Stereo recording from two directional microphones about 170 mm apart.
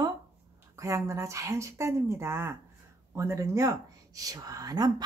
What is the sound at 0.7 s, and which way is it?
Speech, 20° right (ahead or behind).